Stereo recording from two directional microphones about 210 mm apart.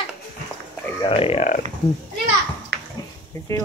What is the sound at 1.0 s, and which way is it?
Speech, 25° left (ahead or behind).